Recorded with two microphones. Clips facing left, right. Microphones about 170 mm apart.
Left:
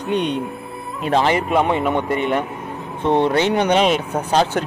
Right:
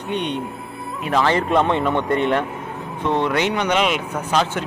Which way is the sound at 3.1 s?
30° left (ahead or behind).